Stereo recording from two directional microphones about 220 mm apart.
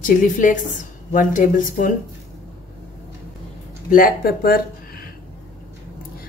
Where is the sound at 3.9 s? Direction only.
40° left (ahead or behind).